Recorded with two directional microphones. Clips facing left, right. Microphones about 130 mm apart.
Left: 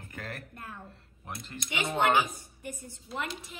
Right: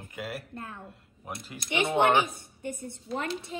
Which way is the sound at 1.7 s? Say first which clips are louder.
Right 3 dB; 25° right (ahead or behind).